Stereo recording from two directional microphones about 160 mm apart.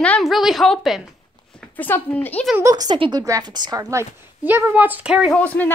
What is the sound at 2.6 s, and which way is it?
A woman's voice, 20° right (ahead or behind).